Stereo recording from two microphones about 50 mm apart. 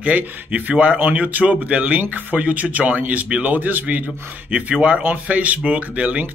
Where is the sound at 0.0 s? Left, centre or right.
Right.